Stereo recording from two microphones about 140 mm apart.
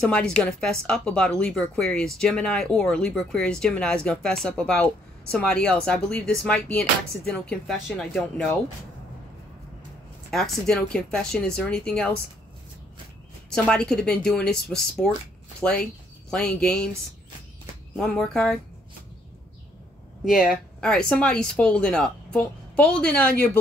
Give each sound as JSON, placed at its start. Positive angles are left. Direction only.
{"t": 0.0, "sound": "speech", "side_deg": 5}
{"t": 10.3, "sound": "speech", "side_deg": 5}
{"t": 13.5, "sound": "speech", "side_deg": 5}
{"t": 17.9, "sound": "speech", "side_deg": 5}
{"t": 20.2, "sound": "speech", "side_deg": 0}